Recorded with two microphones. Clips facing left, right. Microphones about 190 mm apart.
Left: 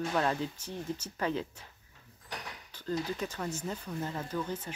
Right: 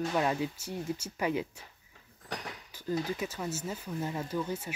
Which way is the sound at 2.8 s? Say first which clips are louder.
Right 1 dB; 10° right (ahead or behind).